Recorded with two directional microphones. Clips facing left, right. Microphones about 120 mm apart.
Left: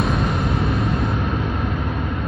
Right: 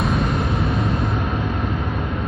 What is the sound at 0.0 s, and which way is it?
Vehicle, centre (ahead or behind).